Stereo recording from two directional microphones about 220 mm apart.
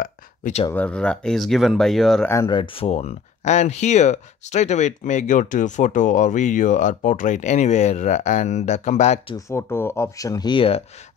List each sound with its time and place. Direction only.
0.0 s a sound: 35° left (ahead or behind)
0.7 s speech: 5° left (ahead or behind)
2.3 s speech: 20° left (ahead or behind)
9.5 s speech: 10° left (ahead or behind)